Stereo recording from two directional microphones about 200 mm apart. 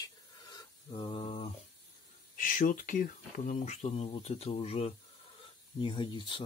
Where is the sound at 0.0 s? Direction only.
20° left (ahead or behind).